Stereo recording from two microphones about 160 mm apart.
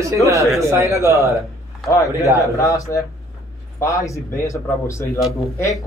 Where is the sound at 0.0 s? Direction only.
20° right (ahead or behind).